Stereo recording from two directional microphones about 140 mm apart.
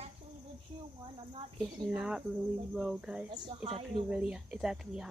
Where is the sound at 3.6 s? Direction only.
45° right (ahead or behind).